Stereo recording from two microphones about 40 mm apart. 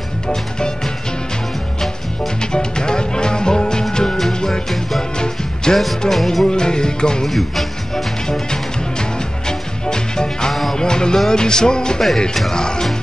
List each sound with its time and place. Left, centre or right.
0.3 s music: centre
2.4 s music: centre
6.0 s music: centre
6.4 s music: centre
7.2 s speech: centre
8.3 s music: centre
10.5 s music: centre
10.8 s music: centre